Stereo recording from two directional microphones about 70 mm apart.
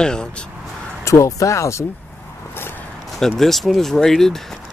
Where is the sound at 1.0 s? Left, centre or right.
Left.